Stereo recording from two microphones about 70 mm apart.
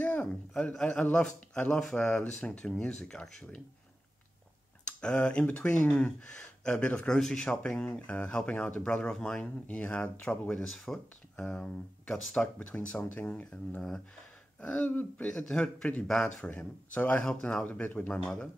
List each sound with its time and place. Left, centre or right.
0.0 s a sound: centre
0.7 s speech: centre
4.8 s speech: centre
16.4 s speech: left